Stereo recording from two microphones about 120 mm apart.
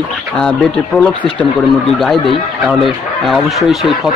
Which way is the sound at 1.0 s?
10° left (ahead or behind).